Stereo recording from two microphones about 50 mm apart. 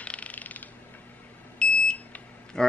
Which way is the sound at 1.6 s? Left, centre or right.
Centre.